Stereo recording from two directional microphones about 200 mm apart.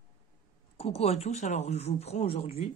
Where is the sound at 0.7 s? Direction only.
30° left (ahead or behind).